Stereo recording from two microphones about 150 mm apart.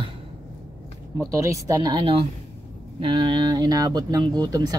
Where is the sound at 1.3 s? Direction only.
20° right (ahead or behind).